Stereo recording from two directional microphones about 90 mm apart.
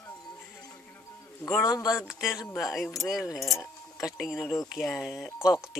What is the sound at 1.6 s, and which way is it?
Speech, 45° left (ahead or behind).